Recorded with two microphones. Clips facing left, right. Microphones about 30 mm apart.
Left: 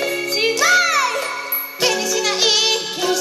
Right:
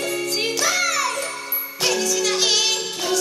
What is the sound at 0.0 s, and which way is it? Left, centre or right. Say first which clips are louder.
Music: left 4 dB; left.